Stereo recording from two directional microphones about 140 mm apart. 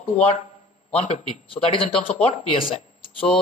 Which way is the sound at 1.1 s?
40° left (ahead or behind).